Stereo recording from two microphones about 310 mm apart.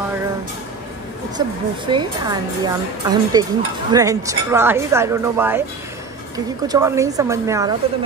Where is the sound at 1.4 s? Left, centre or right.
Centre.